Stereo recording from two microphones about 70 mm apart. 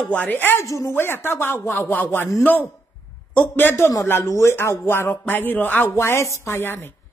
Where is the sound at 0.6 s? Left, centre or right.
Left.